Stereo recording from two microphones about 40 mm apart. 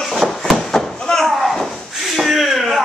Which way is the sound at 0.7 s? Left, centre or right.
Centre.